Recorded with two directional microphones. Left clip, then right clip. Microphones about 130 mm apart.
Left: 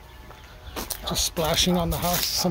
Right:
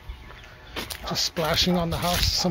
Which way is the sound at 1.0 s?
50° right (ahead or behind).